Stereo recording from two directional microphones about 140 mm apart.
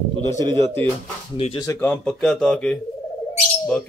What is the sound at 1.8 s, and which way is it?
Speech, 5° left (ahead or behind).